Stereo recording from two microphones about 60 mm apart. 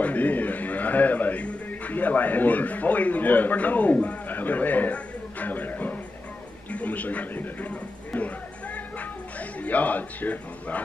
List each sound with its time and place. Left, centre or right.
0.0 s speech: left
9.6 s a man's voice: left